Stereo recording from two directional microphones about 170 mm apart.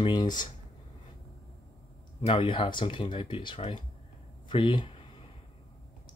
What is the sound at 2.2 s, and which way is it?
Speech, 35° left (ahead or behind).